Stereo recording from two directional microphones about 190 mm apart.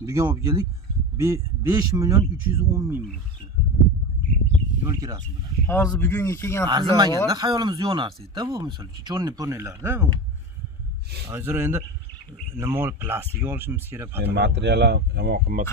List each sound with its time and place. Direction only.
0.0 s speech: 15° right (ahead or behind)
4.8 s speech: 20° right (ahead or behind)
5.7 s speech: 15° left (ahead or behind)
6.7 s speech: 20° right (ahead or behind)
11.2 s speech: 10° right (ahead or behind)
14.2 s speech: 60° right (ahead or behind)